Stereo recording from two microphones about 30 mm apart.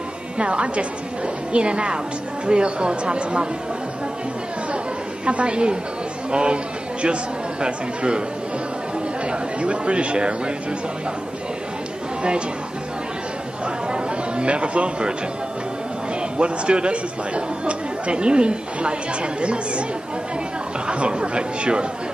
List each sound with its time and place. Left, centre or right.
0.4 s speech: right
5.2 s speech: right
9.6 s speech: right
12.2 s speech: right
13.9 s a sound: right
16.2 s speech: right
20.9 s speech: right